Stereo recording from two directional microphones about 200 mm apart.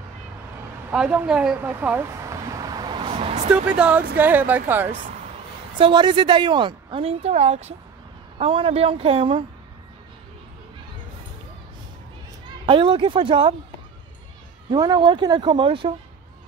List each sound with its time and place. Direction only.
0.8 s a sound: 5° right (ahead or behind); by 3.3 s 30° right (ahead or behind)
3.5 s speech: 5° right (ahead or behind)
5.8 s a woman's voice: 25° right (ahead or behind)
12.6 s a woman's voice: 25° right (ahead or behind)
14.7 s a woman's voice: 20° right (ahead or behind)